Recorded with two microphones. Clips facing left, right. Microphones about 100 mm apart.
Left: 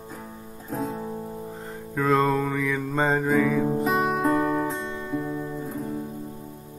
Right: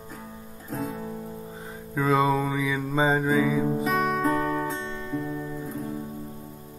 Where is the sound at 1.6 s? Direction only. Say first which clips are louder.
Left 1 dB; 5° right (ahead or behind).